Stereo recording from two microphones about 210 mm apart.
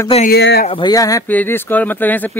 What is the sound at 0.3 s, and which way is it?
Speech, 50° left (ahead or behind).